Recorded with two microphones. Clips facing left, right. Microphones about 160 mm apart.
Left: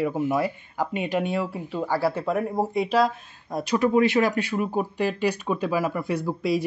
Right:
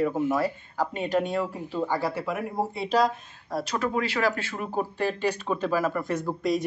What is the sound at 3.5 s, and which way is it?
Speech, 10° left (ahead or behind).